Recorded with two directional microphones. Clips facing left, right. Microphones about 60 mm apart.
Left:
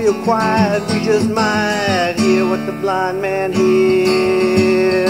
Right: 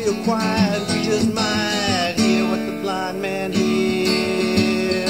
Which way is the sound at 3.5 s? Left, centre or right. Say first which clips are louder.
Left 7 dB; left.